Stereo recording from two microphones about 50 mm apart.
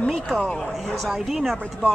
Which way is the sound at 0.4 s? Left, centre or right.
Centre.